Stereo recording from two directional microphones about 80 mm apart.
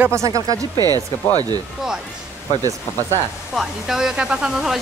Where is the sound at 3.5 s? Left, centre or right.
Centre.